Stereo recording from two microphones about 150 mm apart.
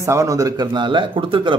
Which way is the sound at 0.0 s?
20° right (ahead or behind).